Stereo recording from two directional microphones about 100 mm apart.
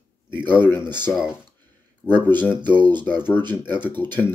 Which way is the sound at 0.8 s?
45° right (ahead or behind).